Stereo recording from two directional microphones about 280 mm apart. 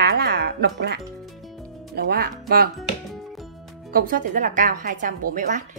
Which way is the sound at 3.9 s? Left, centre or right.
Right.